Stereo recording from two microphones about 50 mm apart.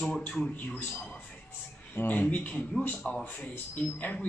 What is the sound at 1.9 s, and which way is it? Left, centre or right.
A man's voice, left.